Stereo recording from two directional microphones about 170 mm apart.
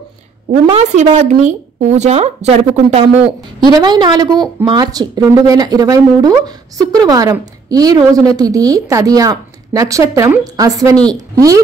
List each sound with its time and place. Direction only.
0.7 s speech: 40° right (ahead or behind)
3.6 s a woman's voice: 25° right (ahead or behind)